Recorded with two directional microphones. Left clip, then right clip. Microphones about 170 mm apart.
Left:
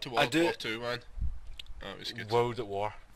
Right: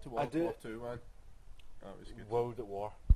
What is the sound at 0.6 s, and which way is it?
Speech, 25° right (ahead or behind).